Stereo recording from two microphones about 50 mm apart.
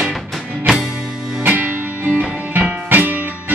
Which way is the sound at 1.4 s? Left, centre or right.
Right.